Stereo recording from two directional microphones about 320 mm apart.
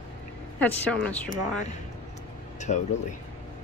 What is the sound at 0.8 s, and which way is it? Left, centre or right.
Speech, centre.